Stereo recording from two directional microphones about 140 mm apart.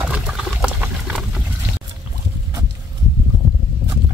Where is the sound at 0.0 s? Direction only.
5° right (ahead or behind).